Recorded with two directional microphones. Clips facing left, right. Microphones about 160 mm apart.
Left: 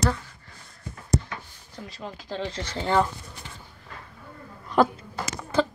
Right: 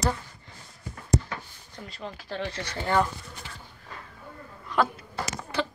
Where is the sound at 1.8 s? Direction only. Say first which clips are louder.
Left 1 dB; 20° left (ahead or behind).